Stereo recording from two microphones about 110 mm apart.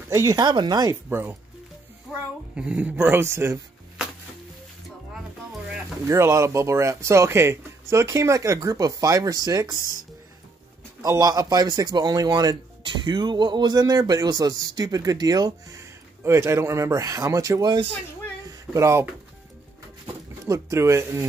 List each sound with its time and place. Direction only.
0.1 s speech: 30° right (ahead or behind)
2.1 s music: 5° right (ahead or behind)
2.5 s speech: 10° right (ahead or behind)
6.0 s speech: 25° right (ahead or behind)
11.0 s speech: 35° right (ahead or behind)
18.7 s speech: 25° right (ahead or behind)
20.1 s speech: 30° right (ahead or behind)